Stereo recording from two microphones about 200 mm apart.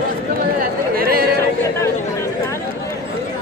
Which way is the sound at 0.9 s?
50° right (ahead or behind).